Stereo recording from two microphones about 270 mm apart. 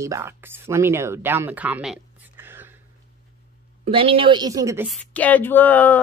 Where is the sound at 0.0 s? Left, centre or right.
Centre.